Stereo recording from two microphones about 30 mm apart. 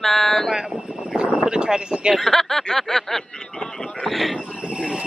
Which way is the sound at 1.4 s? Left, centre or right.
Right.